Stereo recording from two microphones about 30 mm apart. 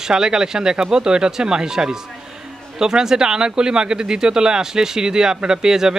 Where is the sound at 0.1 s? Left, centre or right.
Right.